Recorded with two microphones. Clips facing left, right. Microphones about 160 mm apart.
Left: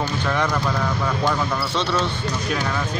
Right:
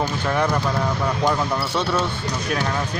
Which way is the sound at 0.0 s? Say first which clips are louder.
Right 1 dB; 15° right (ahead or behind).